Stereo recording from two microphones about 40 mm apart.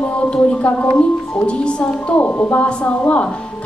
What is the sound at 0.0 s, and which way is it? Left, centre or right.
Speech, left.